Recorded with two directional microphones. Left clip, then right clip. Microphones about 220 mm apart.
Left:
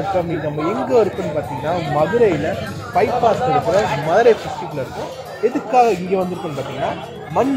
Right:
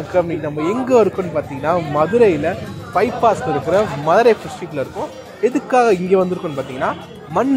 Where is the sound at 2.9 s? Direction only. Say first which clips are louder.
Even; 40° right (ahead or behind).